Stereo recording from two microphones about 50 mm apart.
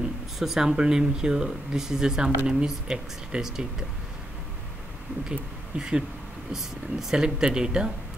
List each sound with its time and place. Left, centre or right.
0.4 s speech: centre
5.8 s speech: centre
7.2 s speech: centre